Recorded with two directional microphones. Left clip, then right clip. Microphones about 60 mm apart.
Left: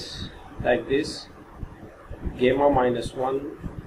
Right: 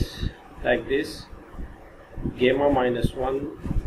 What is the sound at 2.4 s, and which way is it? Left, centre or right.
Speech, centre.